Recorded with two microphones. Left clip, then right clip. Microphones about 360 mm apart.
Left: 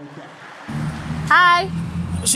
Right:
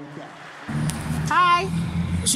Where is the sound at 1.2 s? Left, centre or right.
Centre.